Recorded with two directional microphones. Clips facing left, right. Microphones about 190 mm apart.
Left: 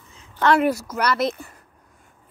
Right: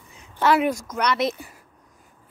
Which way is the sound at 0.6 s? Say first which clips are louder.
Left 2 dB; 5° left (ahead or behind).